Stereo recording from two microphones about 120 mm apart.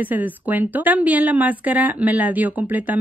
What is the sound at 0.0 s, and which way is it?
Speech, 15° right (ahead or behind).